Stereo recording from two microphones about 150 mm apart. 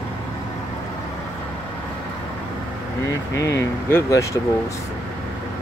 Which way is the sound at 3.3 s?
20° left (ahead or behind).